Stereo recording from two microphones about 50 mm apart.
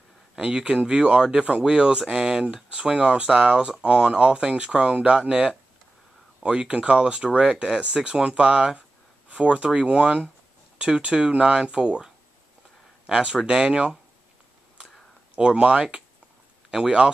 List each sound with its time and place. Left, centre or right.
0.4 s speech: centre
15.3 s speech: centre